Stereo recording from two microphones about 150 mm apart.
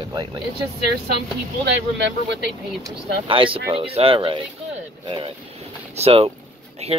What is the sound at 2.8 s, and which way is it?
Speech, 35° right (ahead or behind).